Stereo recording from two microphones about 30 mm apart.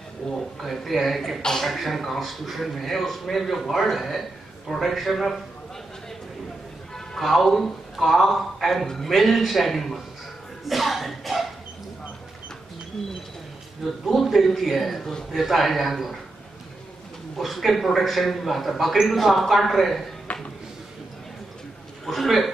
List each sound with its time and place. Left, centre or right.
0.4 s a man's voice: centre
7.2 s a man's voice: centre
10.6 s a sound: centre
14.0 s a man's voice: centre
15.3 s a man's voice: centre
17.4 s a man's voice: centre
20.3 s a sound: left
22.0 s a man's voice: centre